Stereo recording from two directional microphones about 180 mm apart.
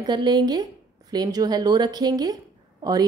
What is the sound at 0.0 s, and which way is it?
A woman's voice, 25° right (ahead or behind).